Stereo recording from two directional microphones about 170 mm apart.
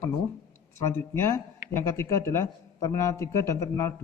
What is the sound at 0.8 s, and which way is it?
A man's voice, 15° left (ahead or behind).